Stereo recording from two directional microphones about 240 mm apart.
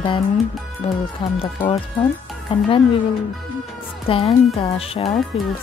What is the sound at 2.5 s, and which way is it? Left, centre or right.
Speech, left.